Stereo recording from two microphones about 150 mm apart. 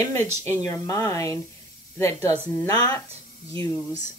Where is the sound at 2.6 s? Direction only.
25° left (ahead or behind).